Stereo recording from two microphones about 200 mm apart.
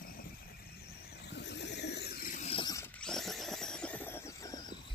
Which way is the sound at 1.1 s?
55° left (ahead or behind).